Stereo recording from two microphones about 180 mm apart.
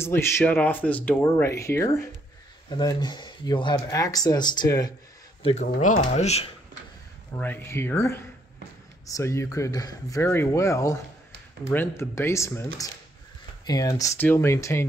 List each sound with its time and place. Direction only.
0.0 s speech: 15° left (ahead or behind)
5.4 s speech: 40° left (ahead or behind)
7.3 s speech: 10° left (ahead or behind)